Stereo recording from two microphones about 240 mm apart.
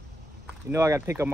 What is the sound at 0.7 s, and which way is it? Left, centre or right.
Speech, centre.